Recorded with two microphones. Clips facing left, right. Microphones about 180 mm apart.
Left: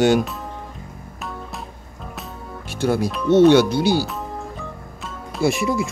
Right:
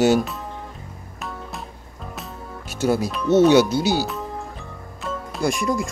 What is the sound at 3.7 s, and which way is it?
Speech, 55° left (ahead or behind).